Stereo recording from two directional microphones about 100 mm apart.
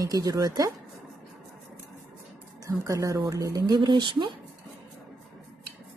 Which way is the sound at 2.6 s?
30° right (ahead or behind).